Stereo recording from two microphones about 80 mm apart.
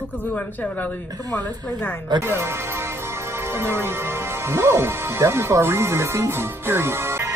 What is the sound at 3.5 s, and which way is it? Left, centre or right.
Speech, right.